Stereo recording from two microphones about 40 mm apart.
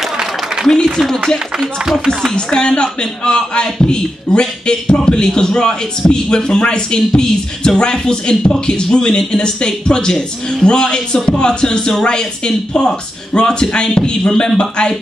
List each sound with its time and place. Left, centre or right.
1.0 s speech: centre
1.6 s speech: centre
2.6 s a man's voice: left